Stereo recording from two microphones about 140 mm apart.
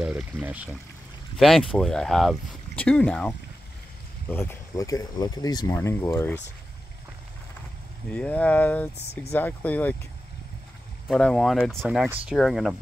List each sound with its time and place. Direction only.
0.0 s speech: 10° right (ahead or behind)
1.4 s speech: centre (ahead or behind); by 6.4 s 15° left (ahead or behind)
8.1 s speech: 10° left (ahead or behind)
11.1 s speech: 5° left (ahead or behind)